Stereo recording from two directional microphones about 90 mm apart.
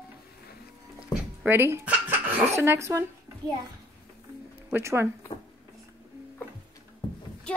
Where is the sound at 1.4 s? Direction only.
25° right (ahead or behind).